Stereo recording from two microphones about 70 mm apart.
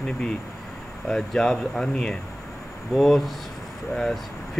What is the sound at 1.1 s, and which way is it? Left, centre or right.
A man's voice, centre.